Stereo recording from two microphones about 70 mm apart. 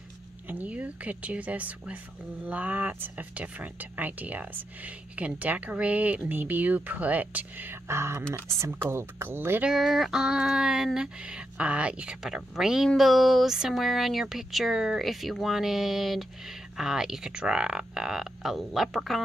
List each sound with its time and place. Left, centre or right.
0.5 s speech: right
7.9 s speech: right
9.8 s a sound: centre
14.2 s speech: centre